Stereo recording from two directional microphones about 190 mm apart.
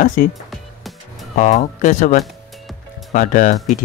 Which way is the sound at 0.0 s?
40° left (ahead or behind).